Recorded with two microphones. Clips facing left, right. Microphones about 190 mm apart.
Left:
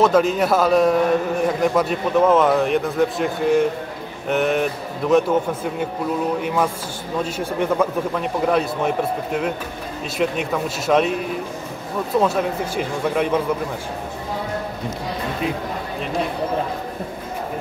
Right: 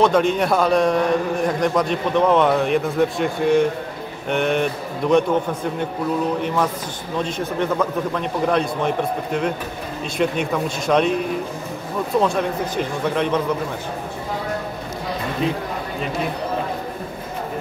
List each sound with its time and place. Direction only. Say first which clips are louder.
0.0 s a man's voice: left 1 dB; 5° left (ahead or behind)
12.2 s a man's voice: left 1 dB; 5° left (ahead or behind)